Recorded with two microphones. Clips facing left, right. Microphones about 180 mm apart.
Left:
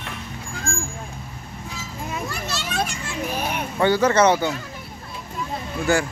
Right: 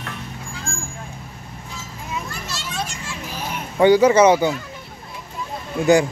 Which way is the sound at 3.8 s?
10° right (ahead or behind).